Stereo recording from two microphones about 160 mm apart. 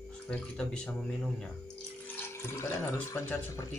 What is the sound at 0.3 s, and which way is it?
Speech, 10° left (ahead or behind).